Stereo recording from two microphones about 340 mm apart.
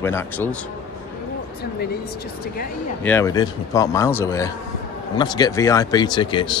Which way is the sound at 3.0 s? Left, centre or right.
Centre.